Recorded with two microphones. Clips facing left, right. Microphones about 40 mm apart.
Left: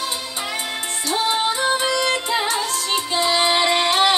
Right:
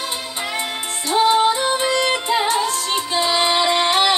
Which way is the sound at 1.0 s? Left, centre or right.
Centre.